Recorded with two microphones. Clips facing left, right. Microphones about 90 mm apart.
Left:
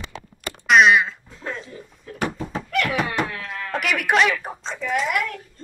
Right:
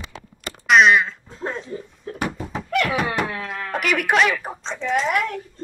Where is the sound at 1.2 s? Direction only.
35° right (ahead or behind).